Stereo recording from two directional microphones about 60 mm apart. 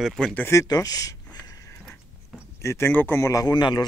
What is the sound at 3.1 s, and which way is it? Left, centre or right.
Speech, left.